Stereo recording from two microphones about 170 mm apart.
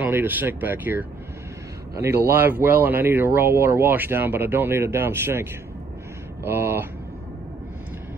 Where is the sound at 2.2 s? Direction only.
10° right (ahead or behind).